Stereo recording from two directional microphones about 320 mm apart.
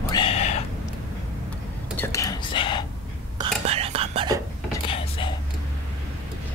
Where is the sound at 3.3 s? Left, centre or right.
Centre.